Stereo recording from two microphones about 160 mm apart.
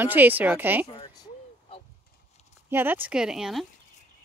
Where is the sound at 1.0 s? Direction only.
25° left (ahead or behind).